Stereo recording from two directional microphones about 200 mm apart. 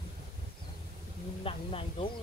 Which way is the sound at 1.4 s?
25° left (ahead or behind).